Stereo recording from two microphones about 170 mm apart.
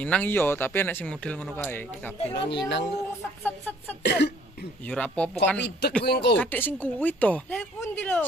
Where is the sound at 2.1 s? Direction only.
30° left (ahead or behind).